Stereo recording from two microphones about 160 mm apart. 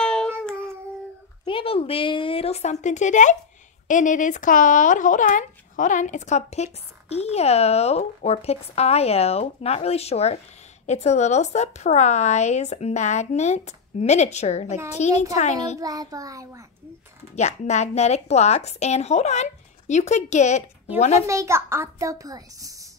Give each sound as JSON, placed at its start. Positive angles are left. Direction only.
{"t": 0.0, "sound": "cat", "side_deg": 5}
{"t": 1.4, "sound": "a woman's voice", "side_deg": 35}
{"t": 15.8, "sound": "a child's voice", "side_deg": -20}
{"t": 17.4, "sound": "a woman's voice", "side_deg": 45}
{"t": 21.3, "sound": "a child's voice", "side_deg": -15}